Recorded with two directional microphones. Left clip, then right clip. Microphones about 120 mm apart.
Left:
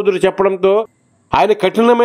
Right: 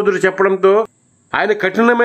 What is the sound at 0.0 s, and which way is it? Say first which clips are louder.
A man's voice: even; 35° left (ahead or behind).